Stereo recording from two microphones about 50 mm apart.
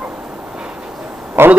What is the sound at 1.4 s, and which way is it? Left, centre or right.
Speech, right.